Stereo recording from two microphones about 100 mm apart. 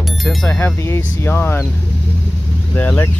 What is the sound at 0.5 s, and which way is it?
Speech, 20° left (ahead or behind).